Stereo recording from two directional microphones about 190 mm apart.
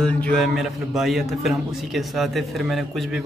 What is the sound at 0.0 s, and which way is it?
A man's voice, 5° left (ahead or behind).